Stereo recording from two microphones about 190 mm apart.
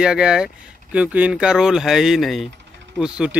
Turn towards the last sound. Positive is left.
turn(degrees=-5)  # may be behind; listen again after turning